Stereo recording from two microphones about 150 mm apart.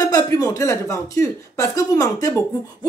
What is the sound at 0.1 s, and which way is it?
Speech, 25° left (ahead or behind).